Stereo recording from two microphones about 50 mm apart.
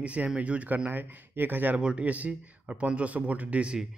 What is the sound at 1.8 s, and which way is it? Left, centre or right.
Speech, right.